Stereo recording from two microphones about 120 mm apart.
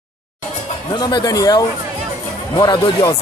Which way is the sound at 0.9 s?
35° left (ahead or behind).